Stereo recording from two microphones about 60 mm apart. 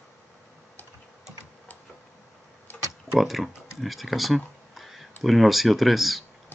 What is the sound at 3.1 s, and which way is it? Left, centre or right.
Speech, centre.